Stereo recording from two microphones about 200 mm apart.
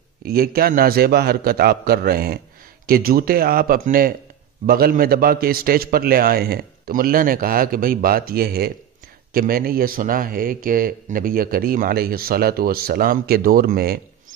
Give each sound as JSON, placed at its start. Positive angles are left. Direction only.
{"t": 0.2, "sound": "speech", "side_deg": -50}